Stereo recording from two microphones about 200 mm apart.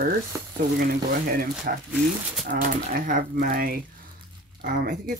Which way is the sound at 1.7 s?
45° right (ahead or behind).